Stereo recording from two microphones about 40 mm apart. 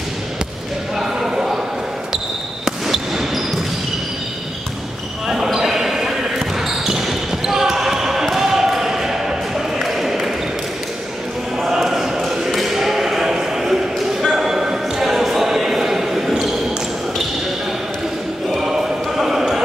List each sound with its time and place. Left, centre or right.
0.9 s a sound: centre
2.6 s basketball bounce: centre
5.3 s basketball bounce: centre
11.6 s basketball bounce: centre
18.5 s basketball bounce: centre